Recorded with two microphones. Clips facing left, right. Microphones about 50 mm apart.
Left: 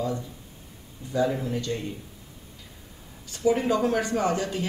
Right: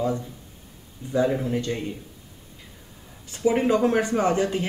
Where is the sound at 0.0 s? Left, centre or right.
Right.